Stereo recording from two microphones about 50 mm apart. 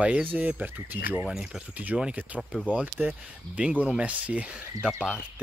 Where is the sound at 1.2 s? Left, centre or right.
Centre.